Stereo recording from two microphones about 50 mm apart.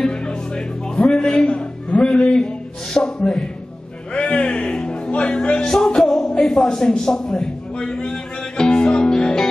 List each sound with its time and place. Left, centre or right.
0.0 s music: centre
1.0 s a sound: centre
4.1 s music: left; by 6.2 s centre
6.2 s a man's voice: centre
8.0 s music: centre